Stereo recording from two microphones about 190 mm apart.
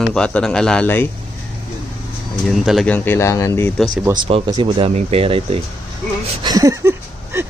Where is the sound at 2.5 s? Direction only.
Centre (ahead or behind).